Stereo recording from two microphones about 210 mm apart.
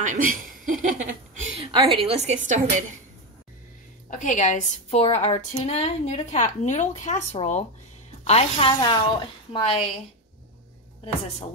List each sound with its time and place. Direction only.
0.0 s a woman's voice: 40° right (ahead or behind)
4.1 s a woman's voice: 35° left (ahead or behind)